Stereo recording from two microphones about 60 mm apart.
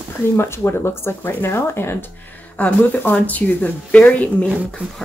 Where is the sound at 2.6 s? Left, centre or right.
Left.